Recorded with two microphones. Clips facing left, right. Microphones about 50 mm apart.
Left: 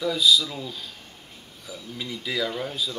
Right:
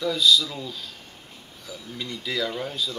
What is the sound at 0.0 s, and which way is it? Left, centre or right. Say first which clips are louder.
Speech: even; centre.